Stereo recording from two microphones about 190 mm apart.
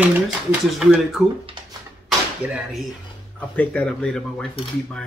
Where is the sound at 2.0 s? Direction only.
Centre (ahead or behind).